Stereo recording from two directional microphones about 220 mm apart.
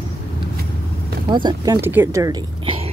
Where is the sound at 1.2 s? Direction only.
20° right (ahead or behind).